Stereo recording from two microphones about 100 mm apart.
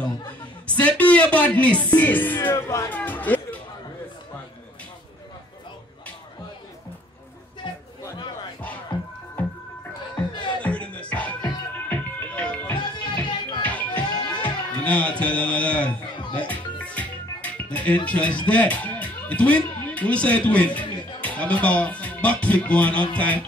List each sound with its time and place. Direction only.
0.3 s speech: 15° left (ahead or behind)
1.9 s music: 20° left (ahead or behind)
2.5 s speech: 35° left (ahead or behind)
2.9 s music: 15° left (ahead or behind)
7.6 s a sound: 55° left (ahead or behind)
8.9 s music: 50° left (ahead or behind)
9.4 s music: 15° left (ahead or behind)
10.6 s music: 10° left (ahead or behind)
14.4 s speech: 15° left (ahead or behind)
16.3 s music: 15° left (ahead or behind)
18.5 s speech: 15° left (ahead or behind)